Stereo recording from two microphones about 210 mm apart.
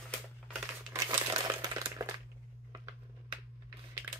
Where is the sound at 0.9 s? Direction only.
15° right (ahead or behind).